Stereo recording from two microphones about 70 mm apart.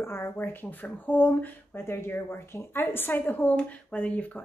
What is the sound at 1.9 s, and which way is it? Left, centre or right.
A woman's voice, left.